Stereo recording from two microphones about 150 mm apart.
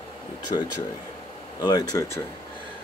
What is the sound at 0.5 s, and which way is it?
Speech, 30° left (ahead or behind).